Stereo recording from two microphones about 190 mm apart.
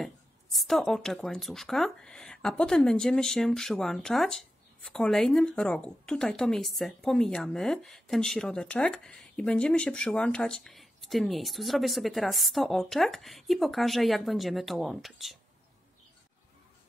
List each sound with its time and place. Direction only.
0.0 s a woman's voice: centre (ahead or behind)